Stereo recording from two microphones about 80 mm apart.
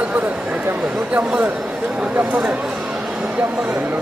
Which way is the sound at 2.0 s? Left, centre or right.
Centre.